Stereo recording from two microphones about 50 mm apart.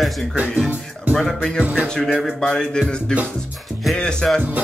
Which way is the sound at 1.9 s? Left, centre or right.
Centre.